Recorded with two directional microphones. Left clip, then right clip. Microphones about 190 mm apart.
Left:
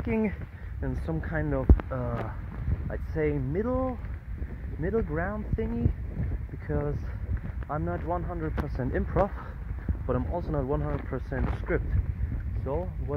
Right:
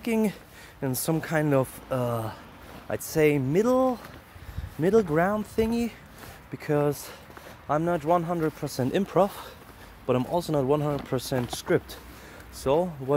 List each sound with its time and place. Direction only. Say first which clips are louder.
0.7 s speech: right 7 dB; 20° right (ahead or behind)